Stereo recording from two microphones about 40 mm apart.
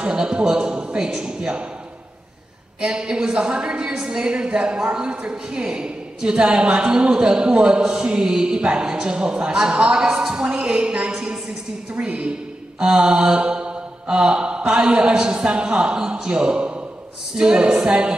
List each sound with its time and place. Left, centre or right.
0.1 s a woman's voice: right
1.0 s mantra: centre
1.4 s a woman's voice: right
2.8 s a woman's voice: right
12.7 s mantra: centre
13.4 s a woman's voice: right